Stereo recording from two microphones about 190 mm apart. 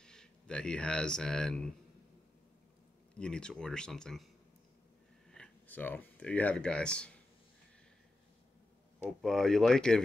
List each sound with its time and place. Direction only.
0.0 s speech: 5° left (ahead or behind)
3.2 s speech: 5° left (ahead or behind)
5.3 s speech: 5° left (ahead or behind)
9.2 s speech: centre (ahead or behind)